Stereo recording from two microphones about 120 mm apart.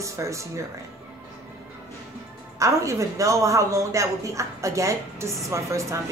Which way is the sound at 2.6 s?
25° right (ahead or behind).